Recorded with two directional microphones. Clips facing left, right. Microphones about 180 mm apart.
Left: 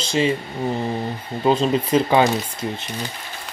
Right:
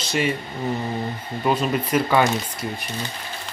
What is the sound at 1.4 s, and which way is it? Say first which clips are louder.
Speech: left 4 dB; 25° left (ahead or behind).